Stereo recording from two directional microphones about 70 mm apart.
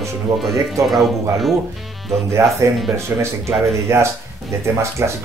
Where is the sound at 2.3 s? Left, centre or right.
Right.